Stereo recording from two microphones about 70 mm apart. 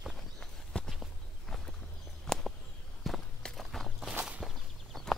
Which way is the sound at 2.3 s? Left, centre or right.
Centre.